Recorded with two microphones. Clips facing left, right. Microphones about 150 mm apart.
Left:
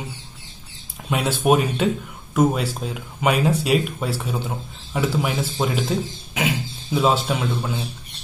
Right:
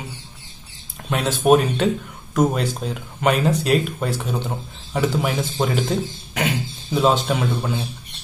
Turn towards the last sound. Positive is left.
turn(degrees=0)  # may be behind; listen again after turning